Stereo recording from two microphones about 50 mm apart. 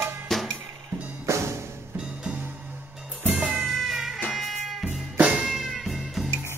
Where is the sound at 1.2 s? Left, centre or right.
Right.